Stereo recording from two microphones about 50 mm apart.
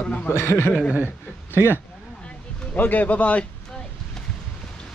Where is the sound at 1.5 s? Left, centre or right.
Right.